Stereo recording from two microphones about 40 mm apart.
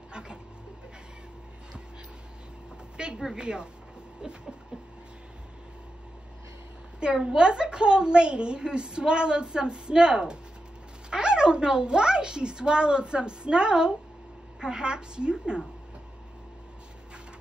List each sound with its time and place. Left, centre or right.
0.1 s a sound: right
3.2 s a woman's voice: centre
7.0 s a woman's voice: right